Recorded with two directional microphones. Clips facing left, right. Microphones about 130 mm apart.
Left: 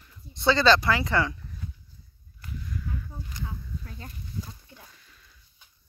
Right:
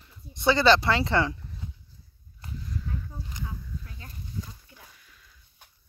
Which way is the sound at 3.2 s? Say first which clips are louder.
Even; 20° right (ahead or behind).